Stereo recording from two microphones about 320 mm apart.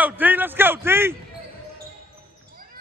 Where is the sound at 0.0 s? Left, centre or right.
Centre.